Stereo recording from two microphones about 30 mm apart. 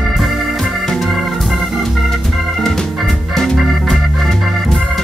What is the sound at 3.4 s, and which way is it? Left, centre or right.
Music, centre.